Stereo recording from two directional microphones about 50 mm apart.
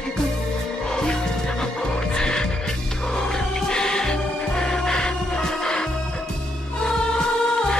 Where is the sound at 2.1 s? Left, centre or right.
Centre.